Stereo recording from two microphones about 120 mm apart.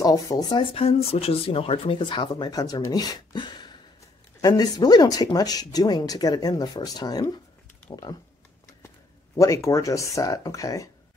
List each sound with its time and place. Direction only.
0.0 s speech: 30° left (ahead or behind)
9.3 s speech: 25° left (ahead or behind)